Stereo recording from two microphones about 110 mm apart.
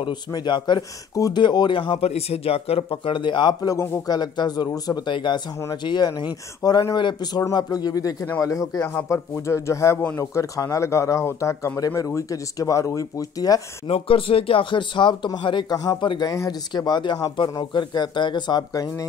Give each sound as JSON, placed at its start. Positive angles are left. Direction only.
{"t": 0.0, "sound": "speech", "side_deg": 40}
{"t": 2.0, "sound": "speech", "side_deg": 70}
{"t": 3.7, "sound": "speech", "side_deg": 25}
{"t": 4.2, "sound": "speech", "side_deg": 40}
{"t": 13.8, "sound": "speech", "side_deg": 60}